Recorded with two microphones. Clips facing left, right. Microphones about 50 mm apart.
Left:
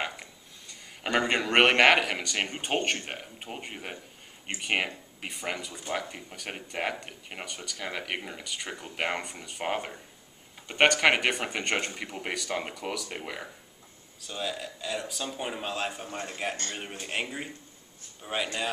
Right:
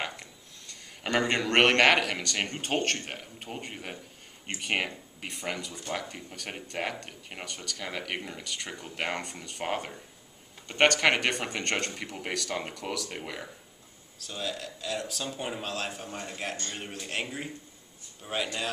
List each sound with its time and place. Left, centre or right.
0.0 s a man's voice: centre